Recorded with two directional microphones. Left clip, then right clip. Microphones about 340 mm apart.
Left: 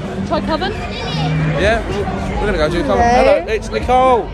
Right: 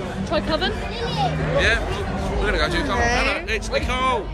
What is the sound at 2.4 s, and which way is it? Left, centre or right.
Speech, centre.